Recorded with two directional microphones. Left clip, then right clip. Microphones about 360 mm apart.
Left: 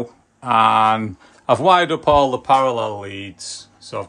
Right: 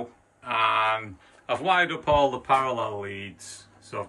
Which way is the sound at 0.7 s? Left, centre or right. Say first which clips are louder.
Left 9 dB; centre.